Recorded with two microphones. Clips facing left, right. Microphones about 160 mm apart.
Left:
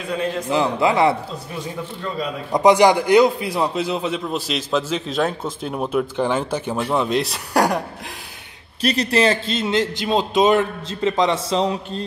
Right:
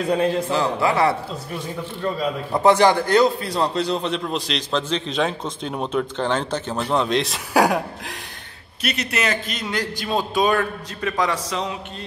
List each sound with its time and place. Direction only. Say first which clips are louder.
0.5 s a man's voice: left 2 dB; 20° left (ahead or behind)
2.5 s a man's voice: left 2 dB; 15° left (ahead or behind); by 7.8 s centre (ahead or behind)
8.8 s a man's voice: left 7 dB; 35° left (ahead or behind)